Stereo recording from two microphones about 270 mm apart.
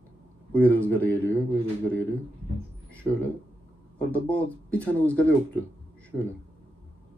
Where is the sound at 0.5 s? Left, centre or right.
Centre.